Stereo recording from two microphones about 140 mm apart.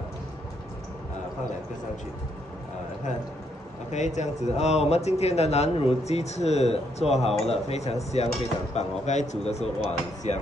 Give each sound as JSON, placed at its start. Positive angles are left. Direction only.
{"t": 3.9, "sound": "a man's voice", "side_deg": 55}